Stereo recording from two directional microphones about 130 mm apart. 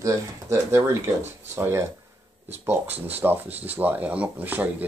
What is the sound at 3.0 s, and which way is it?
Speech, 15° right (ahead or behind).